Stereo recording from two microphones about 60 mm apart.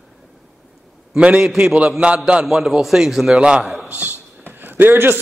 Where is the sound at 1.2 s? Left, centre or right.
Centre.